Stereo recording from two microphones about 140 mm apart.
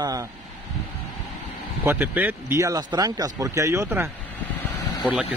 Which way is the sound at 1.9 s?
15° right (ahead or behind).